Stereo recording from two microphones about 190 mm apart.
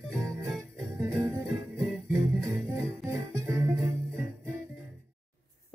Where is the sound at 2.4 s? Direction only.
15° right (ahead or behind).